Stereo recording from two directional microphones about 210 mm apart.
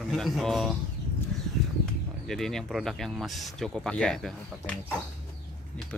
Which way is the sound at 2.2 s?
Centre (ahead or behind).